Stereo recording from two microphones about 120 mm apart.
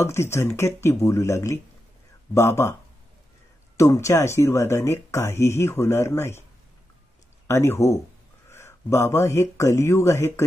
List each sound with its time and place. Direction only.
0.0 s speech: 20° left (ahead or behind)
3.7 s speech: 25° left (ahead or behind)
7.4 s speech: 20° left (ahead or behind)